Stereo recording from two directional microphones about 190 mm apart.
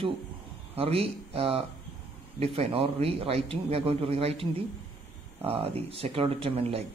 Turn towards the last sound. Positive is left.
turn(degrees=-30)  # may be behind; listen again after turning